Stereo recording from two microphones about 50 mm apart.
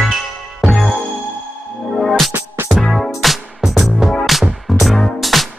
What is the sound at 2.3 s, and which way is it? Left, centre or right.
Music, right.